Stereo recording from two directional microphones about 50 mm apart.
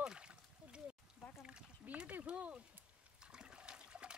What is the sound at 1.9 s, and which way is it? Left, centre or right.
Speech, right.